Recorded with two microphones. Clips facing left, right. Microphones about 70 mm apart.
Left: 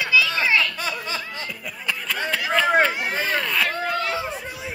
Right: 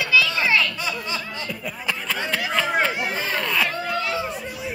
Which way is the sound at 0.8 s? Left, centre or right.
Left.